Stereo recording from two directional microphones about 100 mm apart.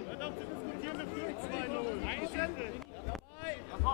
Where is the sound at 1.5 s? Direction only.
15° left (ahead or behind).